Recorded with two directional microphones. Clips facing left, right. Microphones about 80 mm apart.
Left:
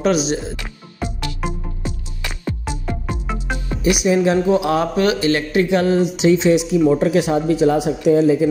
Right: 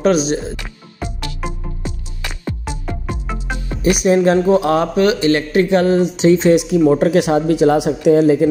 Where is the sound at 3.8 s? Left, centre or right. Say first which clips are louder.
Right 3 dB; right.